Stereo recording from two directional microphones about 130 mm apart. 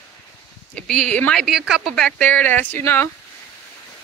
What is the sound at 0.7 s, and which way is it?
Speech, 5° left (ahead or behind).